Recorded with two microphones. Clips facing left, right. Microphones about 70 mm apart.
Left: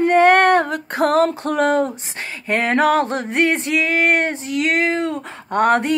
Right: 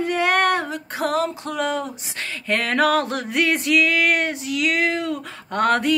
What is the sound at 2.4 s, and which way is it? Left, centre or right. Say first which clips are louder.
Male singing: left 3 dB; left.